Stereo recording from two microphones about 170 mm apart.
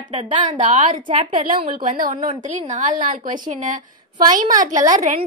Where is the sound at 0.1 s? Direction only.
35° right (ahead or behind).